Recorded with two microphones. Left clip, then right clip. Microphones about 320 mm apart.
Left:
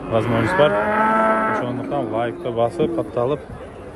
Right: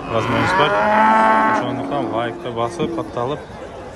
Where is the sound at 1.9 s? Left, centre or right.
Centre.